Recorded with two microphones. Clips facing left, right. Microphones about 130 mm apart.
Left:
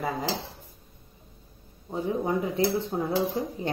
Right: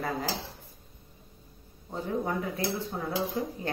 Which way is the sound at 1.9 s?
15° left (ahead or behind).